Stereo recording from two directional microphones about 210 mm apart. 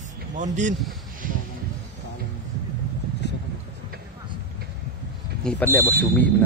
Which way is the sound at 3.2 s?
55° left (ahead or behind).